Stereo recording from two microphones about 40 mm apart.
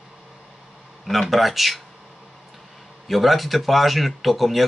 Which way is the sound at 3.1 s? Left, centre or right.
Centre.